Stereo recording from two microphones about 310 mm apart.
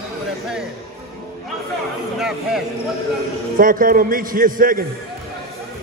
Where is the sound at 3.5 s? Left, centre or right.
Right.